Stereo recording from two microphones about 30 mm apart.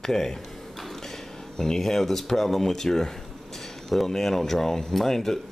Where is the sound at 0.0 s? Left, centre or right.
Centre.